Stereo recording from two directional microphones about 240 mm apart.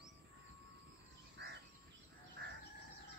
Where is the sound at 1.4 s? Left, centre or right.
Right.